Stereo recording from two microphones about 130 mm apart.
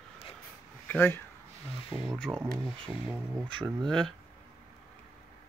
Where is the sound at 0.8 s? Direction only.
15° left (ahead or behind).